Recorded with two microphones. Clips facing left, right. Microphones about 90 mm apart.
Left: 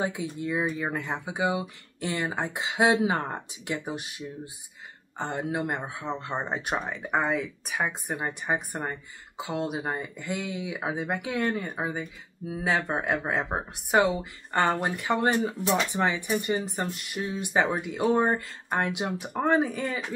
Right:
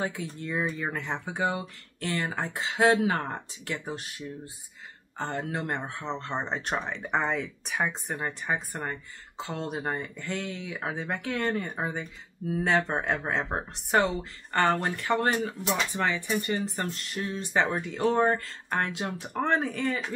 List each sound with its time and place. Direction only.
0.0 s speech: 15° left (ahead or behind)
8.2 s speech: 15° left (ahead or behind)